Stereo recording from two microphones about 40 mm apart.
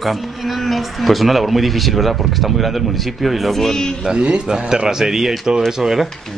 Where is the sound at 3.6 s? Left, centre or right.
Centre.